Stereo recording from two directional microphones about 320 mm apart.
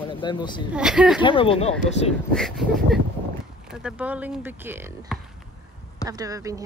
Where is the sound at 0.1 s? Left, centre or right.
Centre.